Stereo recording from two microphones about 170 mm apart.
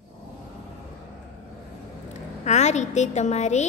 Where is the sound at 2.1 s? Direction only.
40° left (ahead or behind).